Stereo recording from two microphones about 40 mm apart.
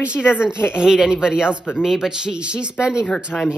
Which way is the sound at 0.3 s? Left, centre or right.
Right.